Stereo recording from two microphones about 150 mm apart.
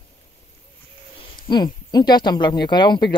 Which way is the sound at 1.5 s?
25° left (ahead or behind).